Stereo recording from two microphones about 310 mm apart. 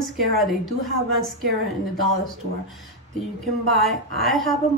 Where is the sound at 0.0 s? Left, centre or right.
Centre.